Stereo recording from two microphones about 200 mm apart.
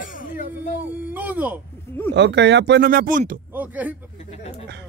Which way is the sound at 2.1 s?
60° right (ahead or behind).